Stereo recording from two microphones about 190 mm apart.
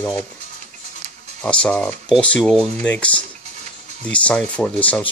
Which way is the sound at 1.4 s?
5° left (ahead or behind).